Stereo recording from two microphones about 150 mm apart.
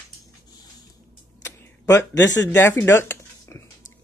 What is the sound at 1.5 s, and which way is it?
Speech, 20° left (ahead or behind).